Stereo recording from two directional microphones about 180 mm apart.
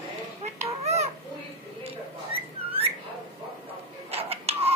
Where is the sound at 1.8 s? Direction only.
30° right (ahead or behind).